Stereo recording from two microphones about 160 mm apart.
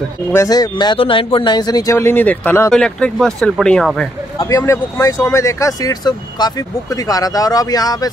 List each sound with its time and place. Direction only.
0.3 s speech: 20° left (ahead or behind); by 4.1 s centre (ahead or behind)
4.4 s speech: 20° left (ahead or behind)